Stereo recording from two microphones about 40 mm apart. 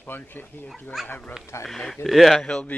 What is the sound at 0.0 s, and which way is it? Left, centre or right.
Speech, left.